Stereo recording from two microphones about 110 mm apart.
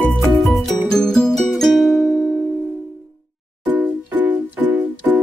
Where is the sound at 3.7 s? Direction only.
15° right (ahead or behind).